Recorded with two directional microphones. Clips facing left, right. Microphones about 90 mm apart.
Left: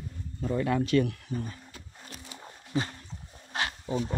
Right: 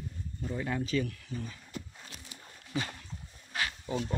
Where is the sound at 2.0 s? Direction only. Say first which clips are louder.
Left 5 dB; 35° left (ahead or behind).